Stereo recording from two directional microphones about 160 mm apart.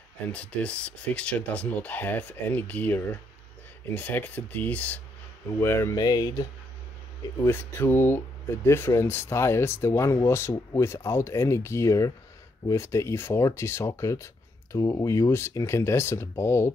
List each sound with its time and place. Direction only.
0.3 s speech: 10° left (ahead or behind); by 6.4 s 25° left (ahead or behind)
7.4 s speech: 15° left (ahead or behind)